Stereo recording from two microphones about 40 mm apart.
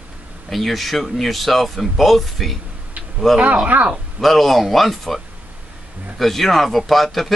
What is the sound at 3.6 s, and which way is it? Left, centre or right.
Speech, right.